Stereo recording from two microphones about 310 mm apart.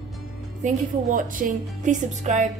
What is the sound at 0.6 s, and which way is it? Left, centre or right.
Speech, right.